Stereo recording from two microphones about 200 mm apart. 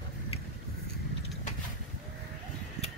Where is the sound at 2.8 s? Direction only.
35° right (ahead or behind).